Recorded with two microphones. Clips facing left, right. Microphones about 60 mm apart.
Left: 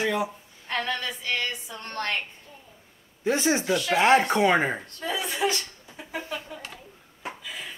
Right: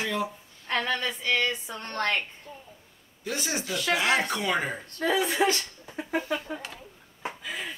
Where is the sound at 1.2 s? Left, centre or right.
Right.